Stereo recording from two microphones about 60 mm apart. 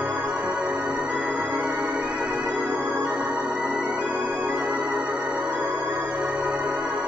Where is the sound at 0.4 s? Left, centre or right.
Right.